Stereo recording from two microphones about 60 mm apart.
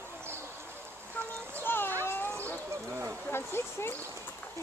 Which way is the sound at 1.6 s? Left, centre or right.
Left.